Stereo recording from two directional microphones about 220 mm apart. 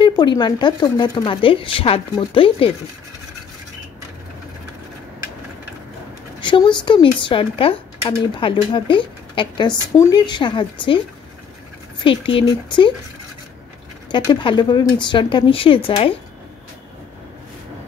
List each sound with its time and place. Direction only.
0.2 s speech: 20° left (ahead or behind)
6.4 s speech: 20° left (ahead or behind)
12.0 s speech: 25° left (ahead or behind)
14.1 s speech: 20° left (ahead or behind)